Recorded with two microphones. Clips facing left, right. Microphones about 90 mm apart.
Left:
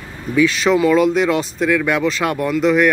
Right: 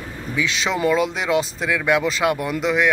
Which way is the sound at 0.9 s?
10° right (ahead or behind).